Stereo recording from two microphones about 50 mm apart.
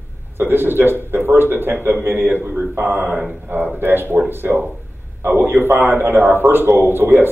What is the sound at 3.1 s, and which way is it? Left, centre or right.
Speech, centre.